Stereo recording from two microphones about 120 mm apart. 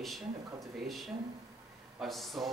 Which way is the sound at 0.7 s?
Centre (ahead or behind).